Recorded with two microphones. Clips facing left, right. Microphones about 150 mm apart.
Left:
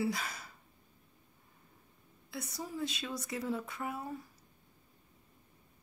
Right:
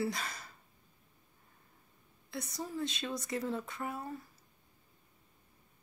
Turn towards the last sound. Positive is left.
turn(degrees=5)  # may be behind; listen again after turning